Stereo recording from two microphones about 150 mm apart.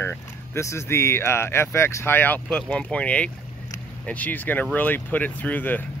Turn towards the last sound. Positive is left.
turn(degrees=10)  # may be behind; listen again after turning